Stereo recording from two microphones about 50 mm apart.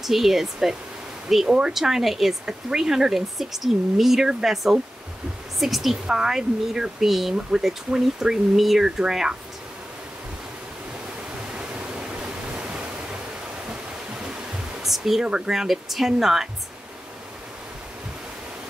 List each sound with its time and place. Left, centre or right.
0.0 s speech: centre
11.5 s pink noise: right
14.8 s speech: centre
15.2 s speech: centre
15.5 s speech: centre